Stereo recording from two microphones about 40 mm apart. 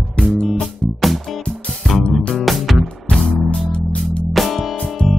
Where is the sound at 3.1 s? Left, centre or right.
Left.